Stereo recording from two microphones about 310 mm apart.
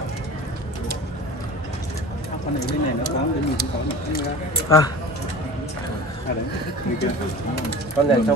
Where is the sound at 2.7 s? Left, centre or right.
Right.